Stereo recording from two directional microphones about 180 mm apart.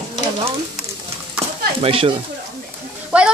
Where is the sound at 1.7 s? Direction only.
30° right (ahead or behind).